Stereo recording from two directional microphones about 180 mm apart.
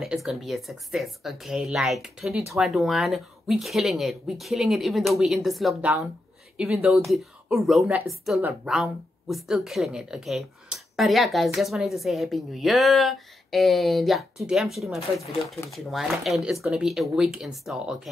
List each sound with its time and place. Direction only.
0.0 s speech: centre (ahead or behind)